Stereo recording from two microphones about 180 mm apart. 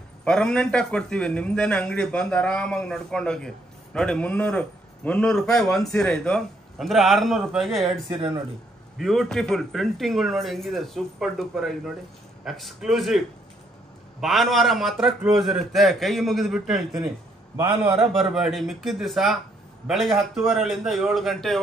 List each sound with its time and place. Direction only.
0.2 s a man's voice: 5° left (ahead or behind)
7.8 s speech: 25° right (ahead or behind)
8.9 s a man's voice: centre (ahead or behind)
14.2 s a man's voice: centre (ahead or behind)
18.3 s a man's voice: centre (ahead or behind)